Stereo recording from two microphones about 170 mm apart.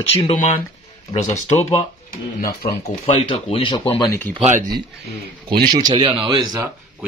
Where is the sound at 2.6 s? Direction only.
30° left (ahead or behind).